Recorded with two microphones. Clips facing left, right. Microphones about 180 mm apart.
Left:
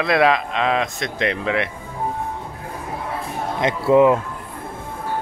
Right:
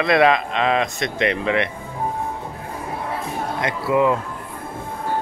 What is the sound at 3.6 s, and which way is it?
Speech, 20° left (ahead or behind).